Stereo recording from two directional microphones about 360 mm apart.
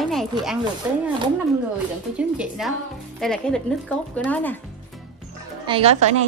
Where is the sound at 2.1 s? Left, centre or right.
Centre.